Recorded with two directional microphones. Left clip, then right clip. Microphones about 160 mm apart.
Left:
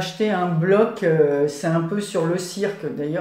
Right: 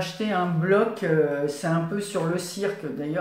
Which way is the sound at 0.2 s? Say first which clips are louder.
Left 5 dB; 30° left (ahead or behind).